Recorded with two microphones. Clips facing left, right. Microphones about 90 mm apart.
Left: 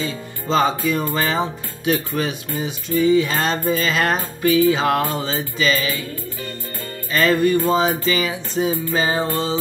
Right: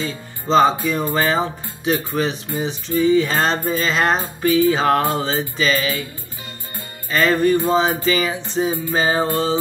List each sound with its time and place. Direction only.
0.5 s music: 35° right (ahead or behind)
7.1 s music: 35° right (ahead or behind)